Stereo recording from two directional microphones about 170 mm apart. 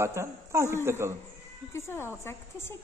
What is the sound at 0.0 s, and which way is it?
A man's voice, 15° right (ahead or behind).